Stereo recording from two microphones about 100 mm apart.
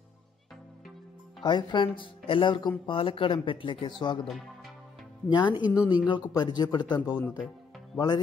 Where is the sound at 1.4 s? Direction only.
50° left (ahead or behind).